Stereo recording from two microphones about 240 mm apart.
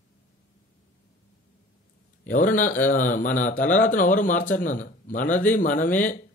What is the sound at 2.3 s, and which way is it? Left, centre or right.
A man's voice, left.